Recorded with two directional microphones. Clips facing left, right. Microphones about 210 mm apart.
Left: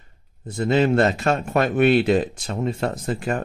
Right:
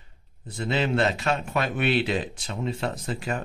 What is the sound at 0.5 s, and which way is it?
A man's voice, 45° left (ahead or behind).